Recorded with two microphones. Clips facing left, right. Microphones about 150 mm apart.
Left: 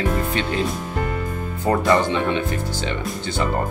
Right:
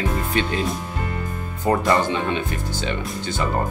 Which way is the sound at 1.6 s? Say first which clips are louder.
Left 1 dB; 15° right (ahead or behind).